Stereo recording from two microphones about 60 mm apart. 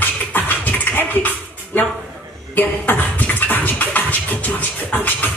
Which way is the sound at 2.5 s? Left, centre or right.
Left.